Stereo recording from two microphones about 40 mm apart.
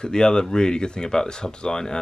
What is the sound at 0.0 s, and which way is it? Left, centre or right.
Speech, centre.